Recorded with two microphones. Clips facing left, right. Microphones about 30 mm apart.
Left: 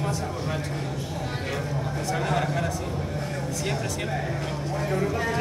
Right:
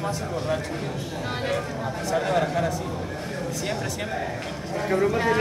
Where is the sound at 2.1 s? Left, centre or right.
Centre.